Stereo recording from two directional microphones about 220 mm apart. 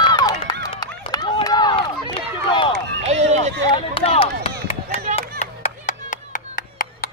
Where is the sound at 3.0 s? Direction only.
30° right (ahead or behind).